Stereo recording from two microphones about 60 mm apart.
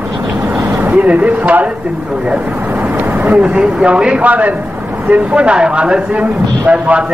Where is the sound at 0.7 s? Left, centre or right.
Right.